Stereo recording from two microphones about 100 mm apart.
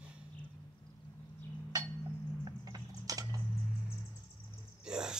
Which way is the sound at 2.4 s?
40° right (ahead or behind).